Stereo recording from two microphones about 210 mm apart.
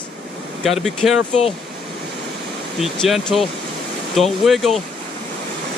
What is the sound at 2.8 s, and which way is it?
Speech, centre (ahead or behind).